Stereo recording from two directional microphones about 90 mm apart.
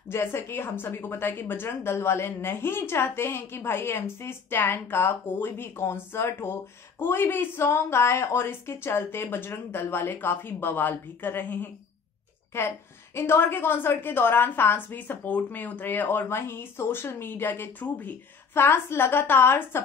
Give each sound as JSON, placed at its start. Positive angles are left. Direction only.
{"t": 0.1, "sound": "a woman's voice", "side_deg": 30}